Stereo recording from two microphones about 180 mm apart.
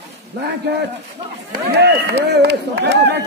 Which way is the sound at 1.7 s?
65° right (ahead or behind).